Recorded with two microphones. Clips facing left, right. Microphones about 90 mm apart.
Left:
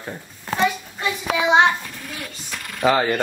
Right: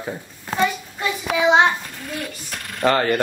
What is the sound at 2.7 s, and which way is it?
Speech, 5° left (ahead or behind).